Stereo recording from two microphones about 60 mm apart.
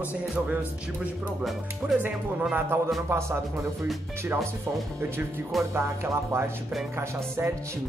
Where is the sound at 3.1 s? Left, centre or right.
Right.